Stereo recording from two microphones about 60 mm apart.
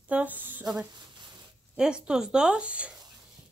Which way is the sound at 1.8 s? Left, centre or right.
Centre.